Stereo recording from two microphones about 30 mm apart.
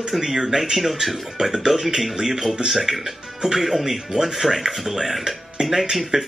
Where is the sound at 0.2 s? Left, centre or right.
Centre.